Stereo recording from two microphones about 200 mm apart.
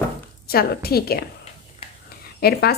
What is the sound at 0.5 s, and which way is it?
Speech, 50° left (ahead or behind).